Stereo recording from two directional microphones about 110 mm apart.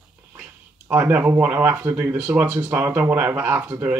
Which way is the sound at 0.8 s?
15° right (ahead or behind).